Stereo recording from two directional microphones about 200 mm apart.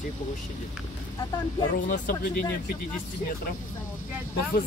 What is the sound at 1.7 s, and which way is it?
Speech, 45° left (ahead or behind).